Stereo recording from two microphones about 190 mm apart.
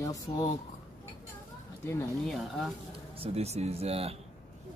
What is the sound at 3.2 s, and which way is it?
Speech, 35° right (ahead or behind).